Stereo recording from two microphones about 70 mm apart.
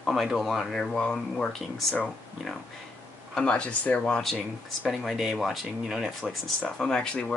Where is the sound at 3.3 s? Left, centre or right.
Centre.